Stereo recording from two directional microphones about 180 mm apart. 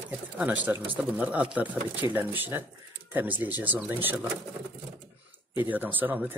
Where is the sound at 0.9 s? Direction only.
10° right (ahead or behind).